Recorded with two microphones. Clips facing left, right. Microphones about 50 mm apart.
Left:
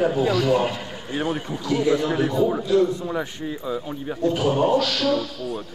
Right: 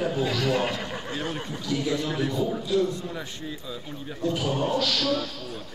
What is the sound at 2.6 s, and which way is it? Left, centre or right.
Music, centre.